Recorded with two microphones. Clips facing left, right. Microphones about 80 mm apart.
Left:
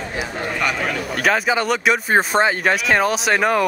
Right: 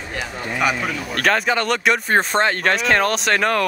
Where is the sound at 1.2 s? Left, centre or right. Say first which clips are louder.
Even; centre.